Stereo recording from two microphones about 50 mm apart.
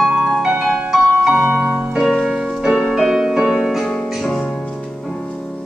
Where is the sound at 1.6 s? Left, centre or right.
Right.